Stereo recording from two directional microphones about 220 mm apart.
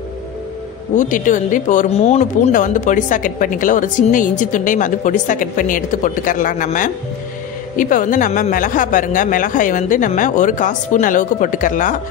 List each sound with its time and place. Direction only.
0.9 s speech: 35° left (ahead or behind)